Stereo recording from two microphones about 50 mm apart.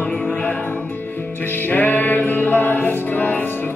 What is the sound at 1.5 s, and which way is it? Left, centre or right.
Music, left.